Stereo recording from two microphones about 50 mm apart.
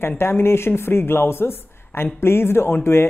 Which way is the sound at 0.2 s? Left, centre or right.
Left.